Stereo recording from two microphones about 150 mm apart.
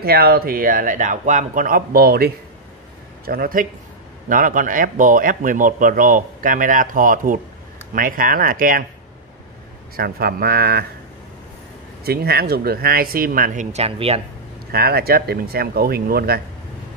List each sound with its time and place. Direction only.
0.0 s a man's voice: 90° right
3.3 s a man's voice: 75° right (ahead or behind)
4.3 s a man's voice: 65° right (ahead or behind)
9.9 s speech: 90° right
12.0 s speech: 90° right; by 13.7 s 70° right (ahead or behind)
13.7 s speech: 45° right (ahead or behind)
14.7 s speech: 90° right